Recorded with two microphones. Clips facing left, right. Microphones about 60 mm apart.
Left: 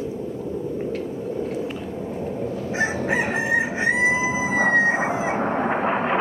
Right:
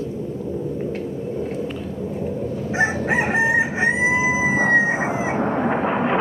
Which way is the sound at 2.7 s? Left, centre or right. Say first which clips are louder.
Right 3 dB; right.